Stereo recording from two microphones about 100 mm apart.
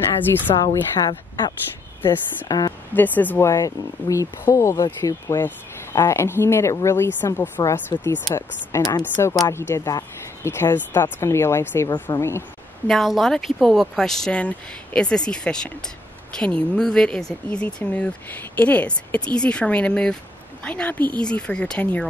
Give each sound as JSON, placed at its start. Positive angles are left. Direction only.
{"t": 0.5, "sound": "a woman's voice", "side_deg": 65}
{"t": 0.9, "sound": "speech", "side_deg": 45}
{"t": 2.9, "sound": "speech", "side_deg": 20}
{"t": 3.4, "sound": "speech", "side_deg": 35}
{"t": 8.3, "sound": "speech", "side_deg": 35}
{"t": 9.0, "sound": "speech", "side_deg": 20}
{"t": 9.3, "sound": "speech", "side_deg": 40}
{"t": 9.6, "sound": "speech", "side_deg": 30}
{"t": 12.8, "sound": "speech", "side_deg": 0}